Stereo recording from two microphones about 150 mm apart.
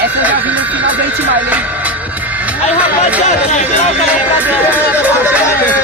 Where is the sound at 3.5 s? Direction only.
50° left (ahead or behind).